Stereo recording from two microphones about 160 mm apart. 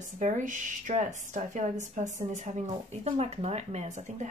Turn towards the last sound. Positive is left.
turn(degrees=-50)  # may be behind; listen again after turning